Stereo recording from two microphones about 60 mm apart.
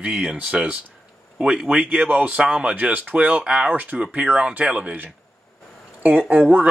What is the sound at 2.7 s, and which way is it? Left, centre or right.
Speech, right.